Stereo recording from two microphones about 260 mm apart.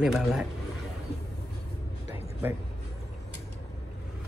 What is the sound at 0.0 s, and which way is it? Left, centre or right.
Speech, centre.